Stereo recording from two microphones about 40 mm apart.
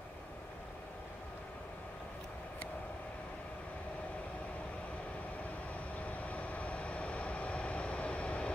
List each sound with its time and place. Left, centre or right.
6.0 s vehicle: left